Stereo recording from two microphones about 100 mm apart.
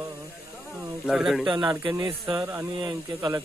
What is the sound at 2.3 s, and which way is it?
Speech, 20° right (ahead or behind).